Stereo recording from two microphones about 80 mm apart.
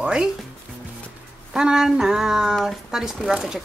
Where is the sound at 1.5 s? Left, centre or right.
Centre.